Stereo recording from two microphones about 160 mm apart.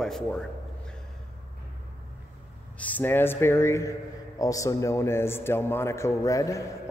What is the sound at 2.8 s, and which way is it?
A man's voice, 10° left (ahead or behind).